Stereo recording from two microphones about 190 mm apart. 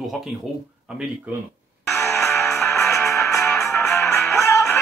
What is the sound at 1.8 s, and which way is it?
Music, centre (ahead or behind).